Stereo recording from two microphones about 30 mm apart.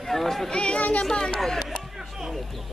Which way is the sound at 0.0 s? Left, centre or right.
Centre.